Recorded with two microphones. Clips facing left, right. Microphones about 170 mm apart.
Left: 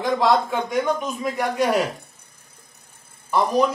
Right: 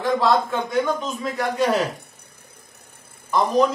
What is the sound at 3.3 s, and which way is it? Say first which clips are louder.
Speech: right 1 dB; 10° left (ahead or behind).